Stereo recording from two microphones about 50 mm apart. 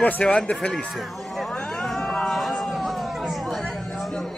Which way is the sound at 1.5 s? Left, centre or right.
Centre.